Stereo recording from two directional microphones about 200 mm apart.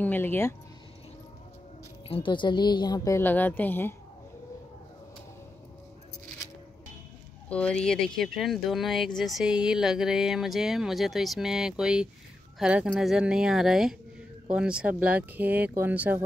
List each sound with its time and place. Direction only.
0.0 s a woman's voice: 10° left (ahead or behind)
2.0 s a woman's voice: 25° left (ahead or behind); by 3.9 s 10° left (ahead or behind)
7.4 s speech: 5° left (ahead or behind)